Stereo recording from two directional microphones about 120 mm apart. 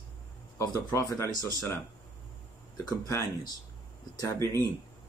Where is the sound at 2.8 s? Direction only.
30° left (ahead or behind).